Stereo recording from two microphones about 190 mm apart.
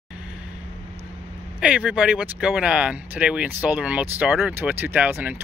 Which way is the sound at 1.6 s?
5° right (ahead or behind).